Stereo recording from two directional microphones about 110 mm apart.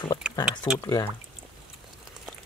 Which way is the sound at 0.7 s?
40° left (ahead or behind).